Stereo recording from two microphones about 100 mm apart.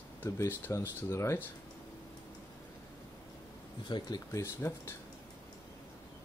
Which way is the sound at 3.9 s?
55° left (ahead or behind).